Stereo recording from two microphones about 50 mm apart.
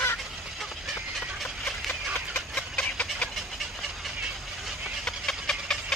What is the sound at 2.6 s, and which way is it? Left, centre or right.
Vehicle, left.